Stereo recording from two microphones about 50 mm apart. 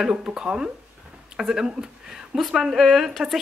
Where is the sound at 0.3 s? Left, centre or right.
Centre.